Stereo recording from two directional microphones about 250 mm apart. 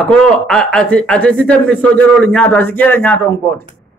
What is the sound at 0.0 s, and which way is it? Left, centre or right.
Speech, centre.